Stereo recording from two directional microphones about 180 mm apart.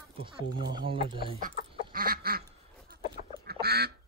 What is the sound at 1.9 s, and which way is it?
Duck, 55° right (ahead or behind).